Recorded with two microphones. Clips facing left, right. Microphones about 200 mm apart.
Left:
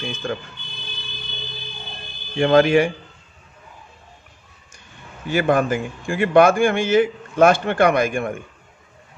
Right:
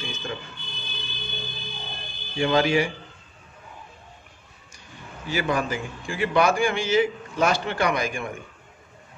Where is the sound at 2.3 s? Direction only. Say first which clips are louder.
Left 6 dB; 55° left (ahead or behind).